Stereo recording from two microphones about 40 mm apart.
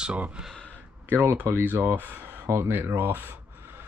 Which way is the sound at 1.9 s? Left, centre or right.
Right.